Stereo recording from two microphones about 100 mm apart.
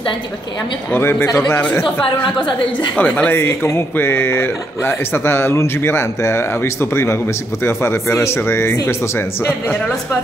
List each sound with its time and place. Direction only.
0.9 s speech: 25° left (ahead or behind)